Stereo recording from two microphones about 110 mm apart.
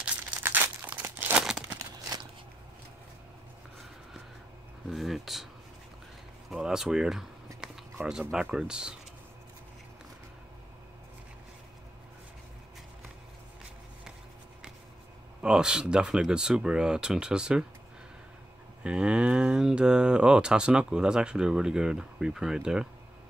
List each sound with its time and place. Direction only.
0.4 s crumpling: 15° right (ahead or behind)
1.4 s crumpling: 5° right (ahead or behind)
1.8 s a sound: 30° right (ahead or behind)
4.8 s speech: centre (ahead or behind)
6.5 s speech: 5° right (ahead or behind)
15.4 s speech: 5° right (ahead or behind)
18.8 s speech: 10° right (ahead or behind)